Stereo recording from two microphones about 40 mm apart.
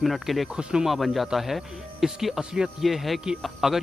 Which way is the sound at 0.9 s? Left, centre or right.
Centre.